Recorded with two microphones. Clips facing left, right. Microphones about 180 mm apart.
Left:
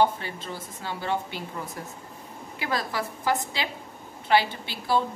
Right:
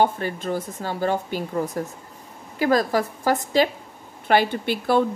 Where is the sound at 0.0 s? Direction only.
50° right (ahead or behind).